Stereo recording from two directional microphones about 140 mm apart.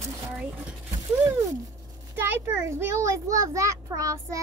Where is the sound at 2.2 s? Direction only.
15° right (ahead or behind).